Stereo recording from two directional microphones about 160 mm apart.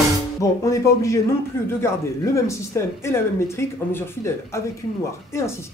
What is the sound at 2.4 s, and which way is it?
Speech, 20° left (ahead or behind).